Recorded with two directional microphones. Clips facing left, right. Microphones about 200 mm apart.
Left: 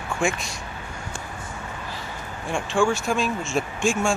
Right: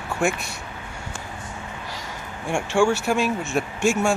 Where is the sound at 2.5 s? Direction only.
10° right (ahead or behind).